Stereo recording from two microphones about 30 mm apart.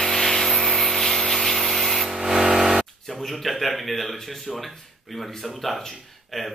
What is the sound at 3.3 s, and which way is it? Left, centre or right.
Speech, centre.